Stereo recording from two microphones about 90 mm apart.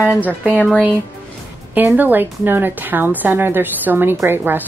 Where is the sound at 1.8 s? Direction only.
20° right (ahead or behind).